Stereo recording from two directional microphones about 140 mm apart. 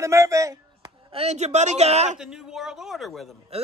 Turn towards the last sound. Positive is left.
turn(degrees=0)  # may be behind; listen again after turning